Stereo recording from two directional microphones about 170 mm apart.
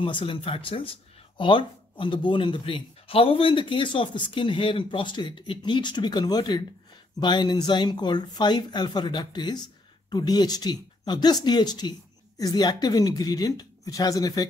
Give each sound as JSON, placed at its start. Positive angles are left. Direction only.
{"t": 0.0, "sound": "speech", "side_deg": 30}